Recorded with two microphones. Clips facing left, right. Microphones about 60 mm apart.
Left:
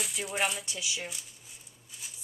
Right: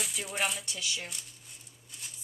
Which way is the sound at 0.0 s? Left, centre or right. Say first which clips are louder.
Left 2 dB; centre.